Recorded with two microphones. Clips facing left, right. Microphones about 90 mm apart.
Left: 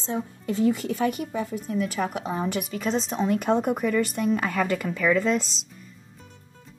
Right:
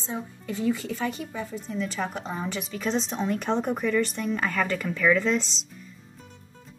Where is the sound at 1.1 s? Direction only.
10° left (ahead or behind).